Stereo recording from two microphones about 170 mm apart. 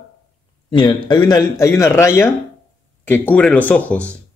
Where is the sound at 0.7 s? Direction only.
25° left (ahead or behind).